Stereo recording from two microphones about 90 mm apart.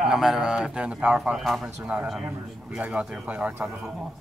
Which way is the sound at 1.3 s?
5° right (ahead or behind).